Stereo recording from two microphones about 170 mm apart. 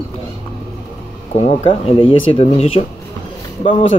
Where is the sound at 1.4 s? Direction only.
35° left (ahead or behind).